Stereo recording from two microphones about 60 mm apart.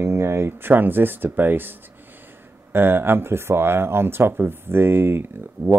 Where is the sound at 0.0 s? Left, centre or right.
Right.